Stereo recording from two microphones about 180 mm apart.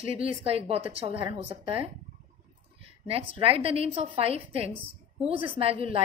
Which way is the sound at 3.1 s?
30° right (ahead or behind).